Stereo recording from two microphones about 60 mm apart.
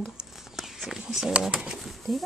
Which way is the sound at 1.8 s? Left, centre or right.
Centre.